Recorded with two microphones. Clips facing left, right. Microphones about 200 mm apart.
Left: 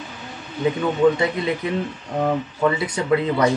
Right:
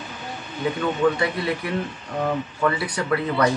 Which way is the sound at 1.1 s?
20° left (ahead or behind).